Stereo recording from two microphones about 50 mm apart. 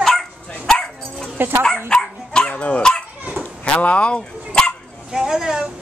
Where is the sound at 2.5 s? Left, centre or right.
Left.